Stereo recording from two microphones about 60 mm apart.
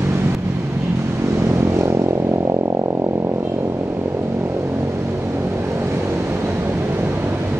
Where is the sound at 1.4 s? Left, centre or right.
Right.